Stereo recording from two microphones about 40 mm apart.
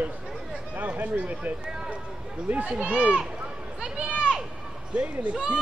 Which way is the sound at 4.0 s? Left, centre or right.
Right.